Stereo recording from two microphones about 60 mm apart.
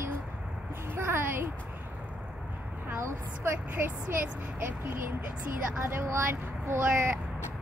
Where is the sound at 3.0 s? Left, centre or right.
Right.